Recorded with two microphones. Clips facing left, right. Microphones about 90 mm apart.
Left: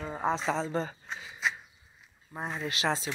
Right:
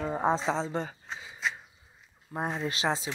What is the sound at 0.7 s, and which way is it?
Speech, 10° right (ahead or behind).